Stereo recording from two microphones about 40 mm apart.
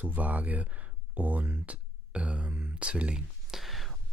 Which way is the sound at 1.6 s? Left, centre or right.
Right.